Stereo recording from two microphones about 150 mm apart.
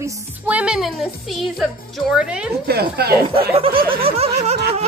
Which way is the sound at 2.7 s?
90° right.